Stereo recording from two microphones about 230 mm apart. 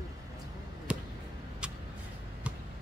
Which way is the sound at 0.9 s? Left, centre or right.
Centre.